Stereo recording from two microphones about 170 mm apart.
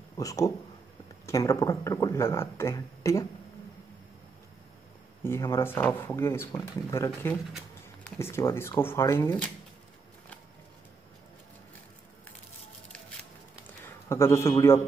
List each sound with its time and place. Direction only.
0.2 s speech: 20° left (ahead or behind)
5.2 s speech: 15° left (ahead or behind)
13.8 s a man's voice: 15° left (ahead or behind)